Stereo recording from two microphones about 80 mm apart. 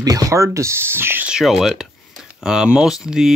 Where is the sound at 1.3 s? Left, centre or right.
Centre.